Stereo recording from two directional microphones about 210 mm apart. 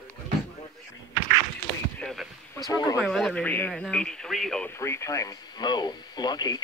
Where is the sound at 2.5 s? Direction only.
15° left (ahead or behind).